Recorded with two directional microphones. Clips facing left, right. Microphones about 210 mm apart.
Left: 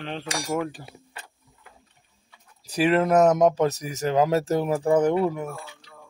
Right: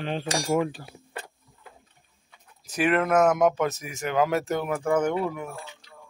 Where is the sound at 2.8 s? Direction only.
35° left (ahead or behind).